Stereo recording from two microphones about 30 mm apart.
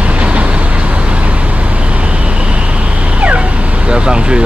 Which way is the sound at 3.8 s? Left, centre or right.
Right.